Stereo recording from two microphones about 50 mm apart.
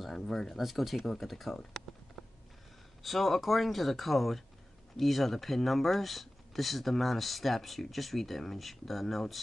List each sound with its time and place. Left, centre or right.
0.3 s speech: centre
0.6 s speech: centre
3.0 s speech: centre